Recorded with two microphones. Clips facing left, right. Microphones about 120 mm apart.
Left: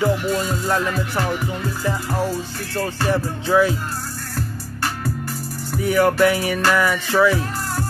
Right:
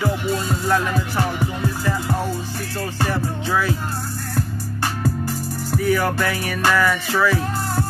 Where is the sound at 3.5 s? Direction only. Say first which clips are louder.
Left 6 dB; 20° left (ahead or behind).